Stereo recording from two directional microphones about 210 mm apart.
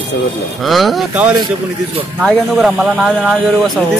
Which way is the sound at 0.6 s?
Centre (ahead or behind).